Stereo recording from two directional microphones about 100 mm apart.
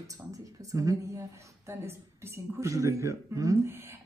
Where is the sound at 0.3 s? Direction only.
35° right (ahead or behind).